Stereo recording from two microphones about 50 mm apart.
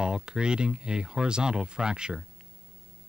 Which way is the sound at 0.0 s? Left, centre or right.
Centre.